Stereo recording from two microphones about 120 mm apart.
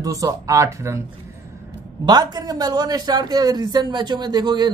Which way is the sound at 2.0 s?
35° right (ahead or behind).